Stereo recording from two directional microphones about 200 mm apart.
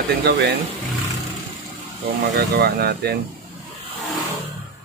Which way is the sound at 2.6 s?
50° right (ahead or behind).